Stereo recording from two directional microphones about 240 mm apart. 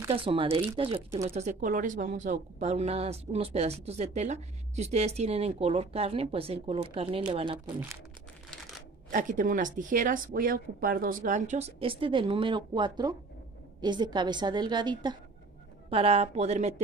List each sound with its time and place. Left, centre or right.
0.1 s speech: right
9.1 s a woman's voice: right